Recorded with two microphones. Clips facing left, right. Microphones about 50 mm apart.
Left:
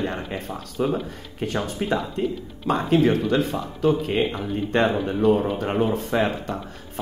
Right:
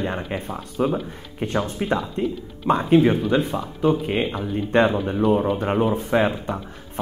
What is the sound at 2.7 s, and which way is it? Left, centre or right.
Speech, centre.